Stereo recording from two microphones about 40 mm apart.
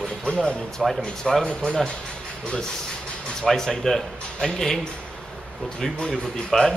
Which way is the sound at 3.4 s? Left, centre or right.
Centre.